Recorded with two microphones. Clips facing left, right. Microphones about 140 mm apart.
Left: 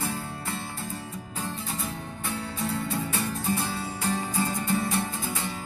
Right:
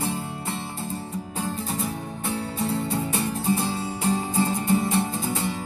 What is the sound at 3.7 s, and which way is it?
Music, 30° right (ahead or behind).